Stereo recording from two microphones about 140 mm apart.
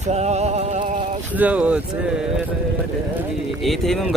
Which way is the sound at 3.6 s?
Centre (ahead or behind).